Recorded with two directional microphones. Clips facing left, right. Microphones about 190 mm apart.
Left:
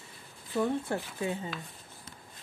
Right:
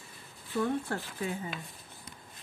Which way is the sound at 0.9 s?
20° left (ahead or behind).